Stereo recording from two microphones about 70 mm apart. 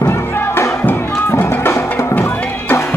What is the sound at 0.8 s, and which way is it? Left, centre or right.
Music, left.